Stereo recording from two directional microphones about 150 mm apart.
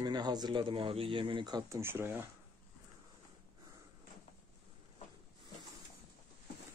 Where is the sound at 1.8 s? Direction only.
15° right (ahead or behind).